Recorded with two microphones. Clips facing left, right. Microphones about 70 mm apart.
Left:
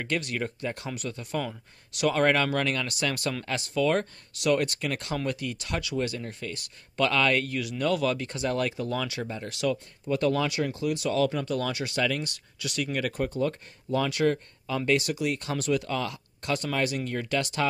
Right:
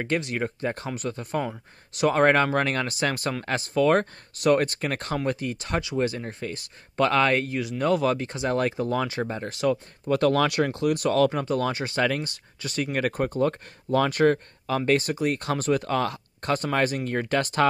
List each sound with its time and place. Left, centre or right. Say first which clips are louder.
0.0 s speech: right 3 dB; right
10.0 s speech: right 4 dB; right
11.4 s speech: right 4 dB; right